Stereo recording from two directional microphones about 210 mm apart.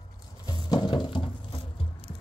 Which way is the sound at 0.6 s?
20° left (ahead or behind).